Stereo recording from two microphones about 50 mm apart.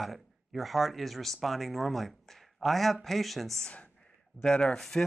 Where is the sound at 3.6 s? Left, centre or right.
Left.